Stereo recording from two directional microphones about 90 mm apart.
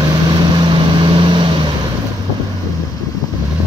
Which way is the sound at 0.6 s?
60° right (ahead or behind).